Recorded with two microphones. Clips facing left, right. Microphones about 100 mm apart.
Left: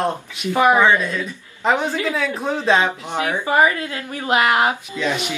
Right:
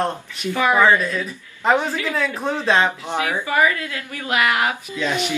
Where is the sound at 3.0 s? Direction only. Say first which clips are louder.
Left 1 dB; 20° left (ahead or behind).